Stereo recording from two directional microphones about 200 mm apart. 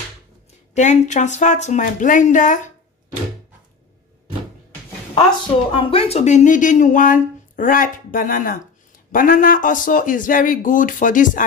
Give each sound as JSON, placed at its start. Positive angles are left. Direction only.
{"t": 0.7, "sound": "speech", "side_deg": 35}
{"t": 5.8, "sound": "speech", "side_deg": 25}